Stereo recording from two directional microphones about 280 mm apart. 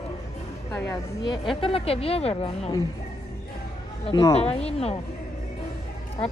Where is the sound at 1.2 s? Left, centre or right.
Centre.